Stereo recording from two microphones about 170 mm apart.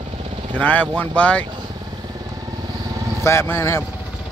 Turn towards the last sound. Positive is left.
turn(degrees=15)  # may be behind; listen again after turning